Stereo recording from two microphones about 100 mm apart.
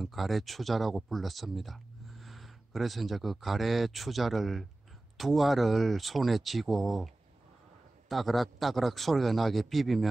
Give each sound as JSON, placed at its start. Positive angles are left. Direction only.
{"t": 0.0, "sound": "speech", "side_deg": 0}
{"t": 8.1, "sound": "speech", "side_deg": 0}